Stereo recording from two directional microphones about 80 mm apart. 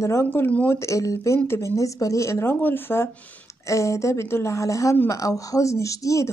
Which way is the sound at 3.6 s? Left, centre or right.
Left.